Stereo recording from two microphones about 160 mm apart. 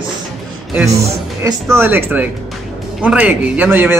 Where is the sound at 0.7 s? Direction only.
20° right (ahead or behind).